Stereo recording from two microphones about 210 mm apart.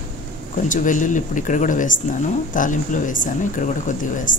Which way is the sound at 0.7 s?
35° left (ahead or behind).